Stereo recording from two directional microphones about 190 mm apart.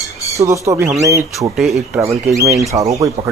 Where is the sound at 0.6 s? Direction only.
15° right (ahead or behind).